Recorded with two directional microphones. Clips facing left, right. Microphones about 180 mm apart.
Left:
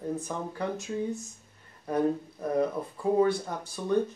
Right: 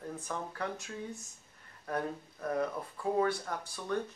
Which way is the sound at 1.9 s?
20° left (ahead or behind).